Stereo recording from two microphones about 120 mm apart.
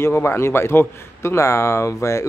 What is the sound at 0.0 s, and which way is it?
A man's voice, 20° left (ahead or behind).